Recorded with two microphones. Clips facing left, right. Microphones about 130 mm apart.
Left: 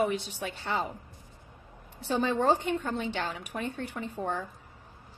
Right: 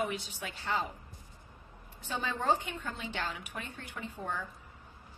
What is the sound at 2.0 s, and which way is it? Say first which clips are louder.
A woman's voice: left 6 dB; 35° left (ahead or behind).